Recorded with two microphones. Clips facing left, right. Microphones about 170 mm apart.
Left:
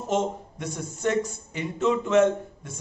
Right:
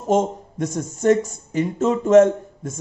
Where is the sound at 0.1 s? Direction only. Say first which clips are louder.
Right 7 dB; 45° right (ahead or behind).